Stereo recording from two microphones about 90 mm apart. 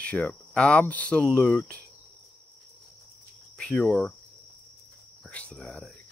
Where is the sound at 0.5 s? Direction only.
15° left (ahead or behind).